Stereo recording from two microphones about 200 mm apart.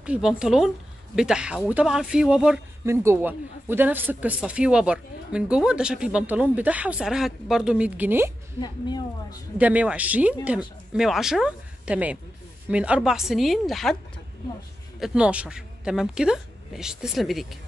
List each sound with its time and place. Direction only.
0.0 s speech: 5° right (ahead or behind)
8.5 s a woman's voice: 20° left (ahead or behind)
9.6 s speech: 5° right (ahead or behind)
15.0 s speech: 5° right (ahead or behind)